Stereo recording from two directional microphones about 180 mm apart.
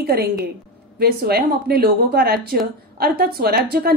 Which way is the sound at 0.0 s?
60° right (ahead or behind).